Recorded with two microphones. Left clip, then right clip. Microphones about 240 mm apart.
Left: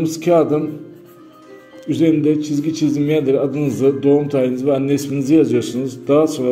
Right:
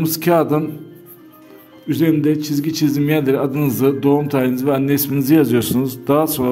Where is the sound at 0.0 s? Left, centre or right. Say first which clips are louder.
Left 1 dB; right.